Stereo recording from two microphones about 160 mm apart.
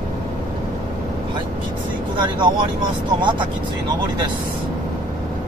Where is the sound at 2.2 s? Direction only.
30° right (ahead or behind).